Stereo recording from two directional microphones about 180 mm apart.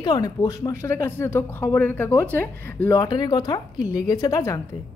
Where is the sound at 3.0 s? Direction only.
20° left (ahead or behind).